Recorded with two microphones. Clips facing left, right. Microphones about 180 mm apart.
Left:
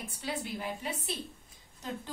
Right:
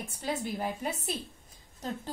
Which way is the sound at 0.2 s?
45° right (ahead or behind).